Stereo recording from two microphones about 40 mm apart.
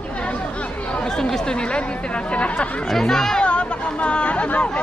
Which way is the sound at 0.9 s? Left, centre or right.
Centre.